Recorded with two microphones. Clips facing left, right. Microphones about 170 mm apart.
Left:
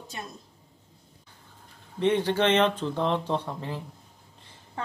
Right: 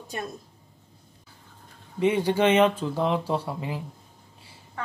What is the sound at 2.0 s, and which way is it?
Speech, 10° right (ahead or behind).